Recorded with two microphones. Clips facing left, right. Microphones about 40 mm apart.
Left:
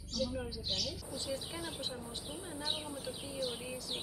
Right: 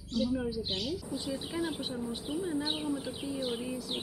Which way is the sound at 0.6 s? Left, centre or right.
Right.